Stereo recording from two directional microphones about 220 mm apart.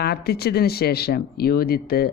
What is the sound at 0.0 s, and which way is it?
Speech, 45° left (ahead or behind).